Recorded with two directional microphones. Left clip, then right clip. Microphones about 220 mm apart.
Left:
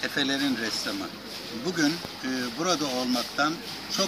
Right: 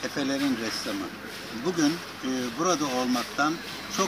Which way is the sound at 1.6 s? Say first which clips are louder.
Right 1 dB; 30° left (ahead or behind).